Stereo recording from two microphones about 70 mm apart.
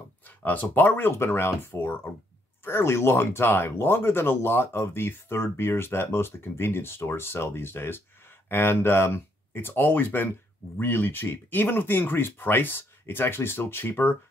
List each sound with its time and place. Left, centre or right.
0.4 s speech: left